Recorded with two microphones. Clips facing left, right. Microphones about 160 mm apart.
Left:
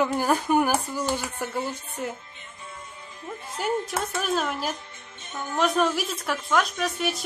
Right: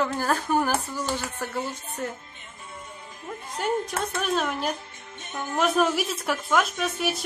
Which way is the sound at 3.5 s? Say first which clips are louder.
Even; 5° left (ahead or behind).